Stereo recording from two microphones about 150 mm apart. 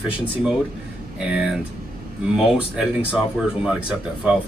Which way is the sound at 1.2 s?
5° right (ahead or behind).